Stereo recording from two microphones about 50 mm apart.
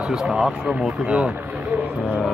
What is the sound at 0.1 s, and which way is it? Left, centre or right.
Speech, centre.